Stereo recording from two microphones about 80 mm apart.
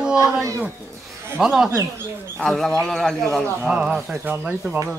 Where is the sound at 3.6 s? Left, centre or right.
Centre.